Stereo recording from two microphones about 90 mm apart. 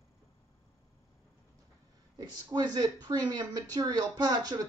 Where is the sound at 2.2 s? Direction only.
45° right (ahead or behind).